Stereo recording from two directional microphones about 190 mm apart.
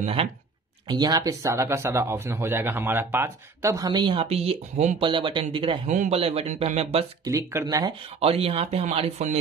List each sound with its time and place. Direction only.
0.0 s speech: 30° right (ahead or behind)
7.2 s speech: 15° right (ahead or behind); by 9.4 s 35° right (ahead or behind)